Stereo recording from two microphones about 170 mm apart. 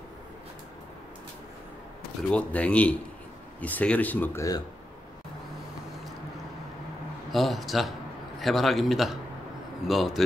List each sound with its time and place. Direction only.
2.3 s speech: 5° left (ahead or behind)
7.3 s a man's voice: centre (ahead or behind)